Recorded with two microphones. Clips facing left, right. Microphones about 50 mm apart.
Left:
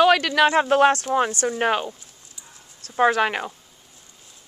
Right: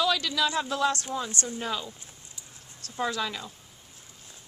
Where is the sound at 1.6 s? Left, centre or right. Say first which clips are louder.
Left 13 dB; left.